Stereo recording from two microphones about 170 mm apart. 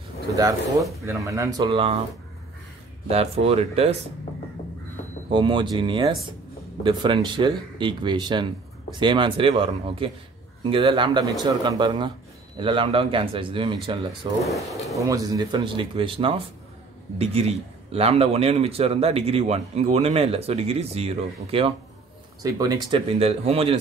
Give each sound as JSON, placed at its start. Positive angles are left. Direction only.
{"t": 0.3, "sound": "speech", "side_deg": -20}
{"t": 3.1, "sound": "a man's voice", "side_deg": -35}
{"t": 5.3, "sound": "a man's voice", "side_deg": -30}
{"t": 14.4, "sound": "speech", "side_deg": 0}
{"t": 15.0, "sound": "a man's voice", "side_deg": -20}
{"t": 22.4, "sound": "a man's voice", "side_deg": -20}